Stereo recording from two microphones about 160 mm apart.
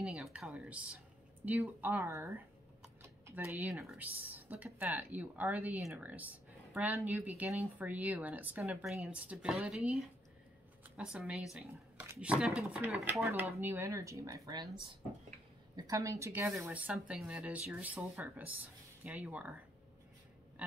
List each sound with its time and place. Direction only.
0.0 s speech: 5° right (ahead or behind)
3.0 s a sound: 15° right (ahead or behind)
3.8 s speech: 5° right (ahead or behind); by 14.7 s 25° right (ahead or behind)
15.7 s speech: 20° right (ahead or behind)